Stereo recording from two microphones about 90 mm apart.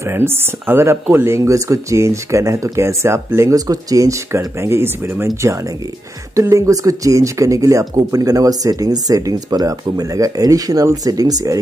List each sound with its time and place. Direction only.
0.0 s speech: 25° right (ahead or behind); by 11.5 s 45° right (ahead or behind)